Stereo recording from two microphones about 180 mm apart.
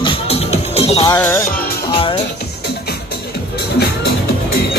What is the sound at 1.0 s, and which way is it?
Music, 15° left (ahead or behind).